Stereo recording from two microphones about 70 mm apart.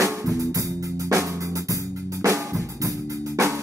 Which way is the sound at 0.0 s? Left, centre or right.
Right.